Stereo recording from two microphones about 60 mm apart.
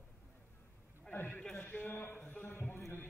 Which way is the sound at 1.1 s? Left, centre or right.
Left.